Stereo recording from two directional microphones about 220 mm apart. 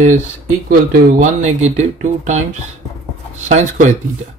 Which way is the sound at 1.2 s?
30° right (ahead or behind).